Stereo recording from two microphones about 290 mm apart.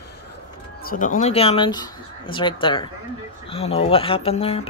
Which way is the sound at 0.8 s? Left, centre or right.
Left.